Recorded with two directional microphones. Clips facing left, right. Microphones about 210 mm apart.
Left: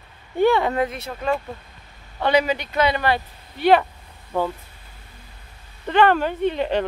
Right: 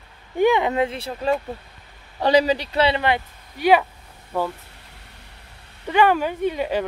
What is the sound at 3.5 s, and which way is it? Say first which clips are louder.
Speech: left 1 dB; 10° right (ahead or behind).